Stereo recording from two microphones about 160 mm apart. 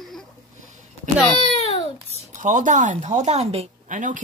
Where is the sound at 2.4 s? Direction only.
50° right (ahead or behind).